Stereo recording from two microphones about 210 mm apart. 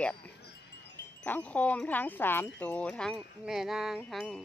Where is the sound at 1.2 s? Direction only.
10° left (ahead or behind).